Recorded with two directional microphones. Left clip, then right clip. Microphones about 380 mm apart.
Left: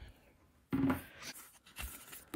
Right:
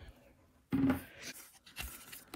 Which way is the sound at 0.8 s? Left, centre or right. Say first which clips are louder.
Right 2 dB; centre.